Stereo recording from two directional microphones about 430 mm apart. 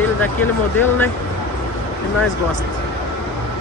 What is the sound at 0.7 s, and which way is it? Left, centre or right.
Speech, centre.